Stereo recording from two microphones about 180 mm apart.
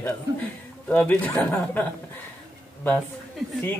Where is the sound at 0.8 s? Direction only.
5° left (ahead or behind).